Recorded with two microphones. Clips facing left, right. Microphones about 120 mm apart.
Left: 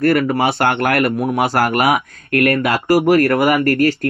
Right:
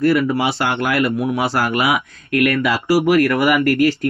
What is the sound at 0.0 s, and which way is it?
Speech, 55° left (ahead or behind).